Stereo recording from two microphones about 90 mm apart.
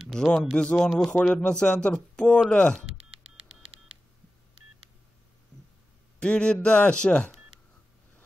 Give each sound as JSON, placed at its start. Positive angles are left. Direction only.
{"t": 0.1, "sound": "speech", "side_deg": 5}
{"t": 6.1, "sound": "speech", "side_deg": 10}